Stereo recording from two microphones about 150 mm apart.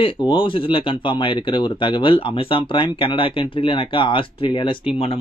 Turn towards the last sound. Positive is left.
turn(degrees=35)  # may be behind; listen again after turning